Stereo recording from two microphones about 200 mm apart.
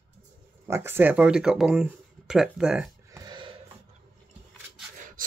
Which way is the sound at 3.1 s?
20° right (ahead or behind).